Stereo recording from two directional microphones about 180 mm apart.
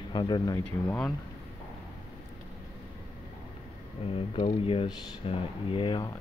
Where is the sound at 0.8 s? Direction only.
5° left (ahead or behind).